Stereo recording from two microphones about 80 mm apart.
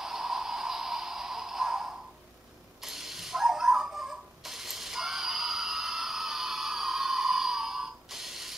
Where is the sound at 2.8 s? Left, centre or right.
Centre.